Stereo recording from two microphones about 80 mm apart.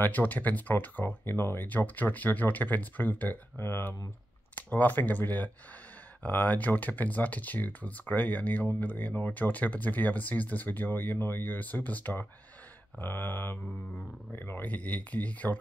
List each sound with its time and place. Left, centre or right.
0.0 s speech: left